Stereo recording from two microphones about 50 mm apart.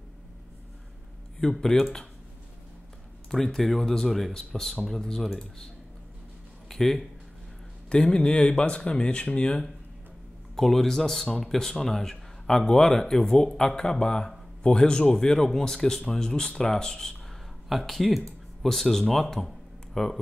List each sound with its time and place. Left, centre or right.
1.4 s speech: centre
3.3 s speech: centre
6.7 s speech: centre
7.9 s speech: centre
10.5 s speech: centre